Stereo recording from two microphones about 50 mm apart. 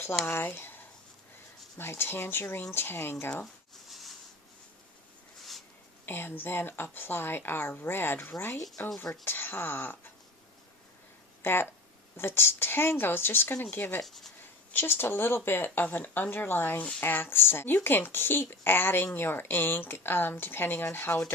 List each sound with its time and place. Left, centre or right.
0.3 s speech: left
1.8 s speech: left
3.9 s a sound: centre
6.0 s speech: left
8.9 s speech: centre
9.2 s speech: left
11.4 s speech: left
14.0 s speech: centre
14.7 s speech: left